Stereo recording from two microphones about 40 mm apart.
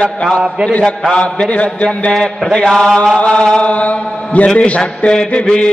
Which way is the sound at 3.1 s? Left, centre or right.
Left.